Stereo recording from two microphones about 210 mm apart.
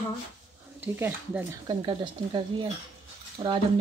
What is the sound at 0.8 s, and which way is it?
Speech, 10° right (ahead or behind).